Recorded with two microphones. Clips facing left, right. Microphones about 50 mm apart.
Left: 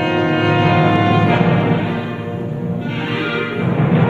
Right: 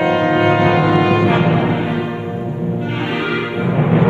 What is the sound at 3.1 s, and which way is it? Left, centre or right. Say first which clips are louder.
Music: left 1 dB; right.